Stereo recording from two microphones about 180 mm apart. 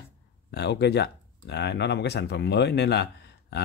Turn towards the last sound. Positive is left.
turn(degrees=70)  # may be behind; listen again after turning